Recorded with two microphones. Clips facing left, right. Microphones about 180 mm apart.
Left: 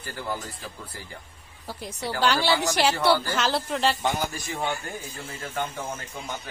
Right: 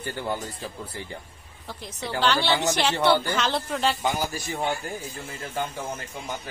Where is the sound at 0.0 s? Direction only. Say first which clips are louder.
Right 3 dB; 25° right (ahead or behind).